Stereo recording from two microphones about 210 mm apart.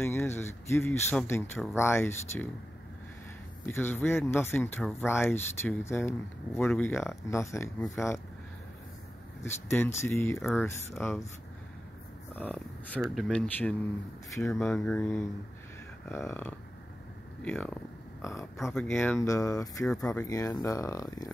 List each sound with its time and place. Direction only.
0.0 s speech: 10° left (ahead or behind)
3.6 s speech: 10° left (ahead or behind)
9.4 s speech: 10° left (ahead or behind)
12.4 s speech: 5° left (ahead or behind)
19.9 s speech: 5° left (ahead or behind)
20.2 s speech: 15° left (ahead or behind)